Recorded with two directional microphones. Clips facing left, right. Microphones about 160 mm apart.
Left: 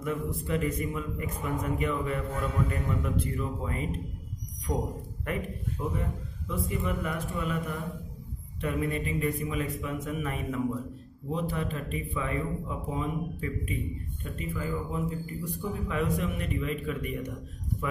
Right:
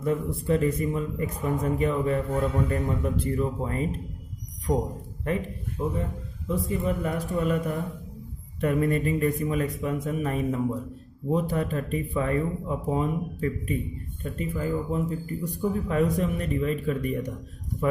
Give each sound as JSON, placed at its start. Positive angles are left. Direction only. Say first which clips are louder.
{"t": 0.0, "sound": "speech", "louder": "right 5 dB", "side_deg": -30}
{"t": 6.4, "sound": "a man's voice", "louder": "right 5 dB", "side_deg": -30}